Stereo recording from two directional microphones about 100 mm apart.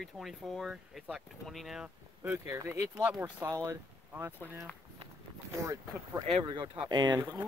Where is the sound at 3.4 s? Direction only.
30° right (ahead or behind).